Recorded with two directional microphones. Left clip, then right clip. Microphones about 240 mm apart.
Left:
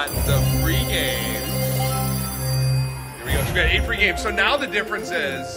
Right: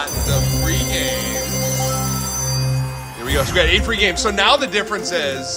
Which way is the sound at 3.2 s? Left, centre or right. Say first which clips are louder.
Right 5 dB; right.